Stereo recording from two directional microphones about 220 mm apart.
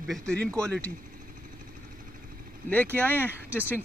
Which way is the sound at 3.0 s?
10° left (ahead or behind).